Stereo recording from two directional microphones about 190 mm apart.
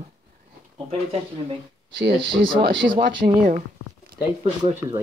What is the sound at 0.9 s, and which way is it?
Speech, 30° right (ahead or behind).